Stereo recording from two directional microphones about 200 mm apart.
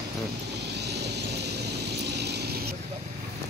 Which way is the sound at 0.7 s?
55° right (ahead or behind).